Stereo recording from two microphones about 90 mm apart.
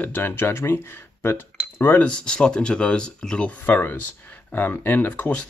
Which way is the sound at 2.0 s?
10° left (ahead or behind).